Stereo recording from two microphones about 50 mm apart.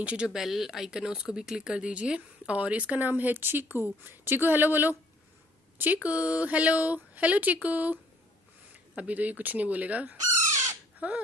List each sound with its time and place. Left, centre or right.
0.0 s speech: right
0.3 s speech: centre; by 3.1 s right
3.1 s a woman's voice: right
6.0 s a woman's voice: right
10.5 s bird: right
11.0 s speech: right